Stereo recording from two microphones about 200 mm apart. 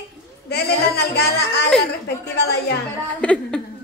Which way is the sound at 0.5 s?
50° left (ahead or behind).